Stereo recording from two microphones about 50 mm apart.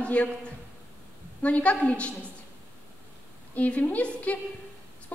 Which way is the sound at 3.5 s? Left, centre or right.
Left.